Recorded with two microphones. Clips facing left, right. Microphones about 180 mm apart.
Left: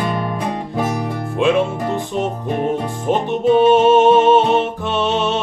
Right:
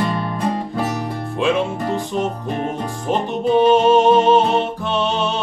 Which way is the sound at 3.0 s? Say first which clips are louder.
Left 3 dB; 5° left (ahead or behind).